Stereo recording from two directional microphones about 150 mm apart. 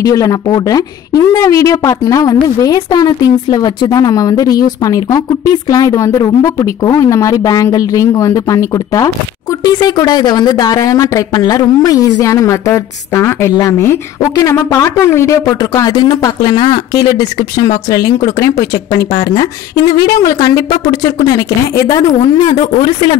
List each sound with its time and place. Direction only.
0.0 s speech: 25° left (ahead or behind)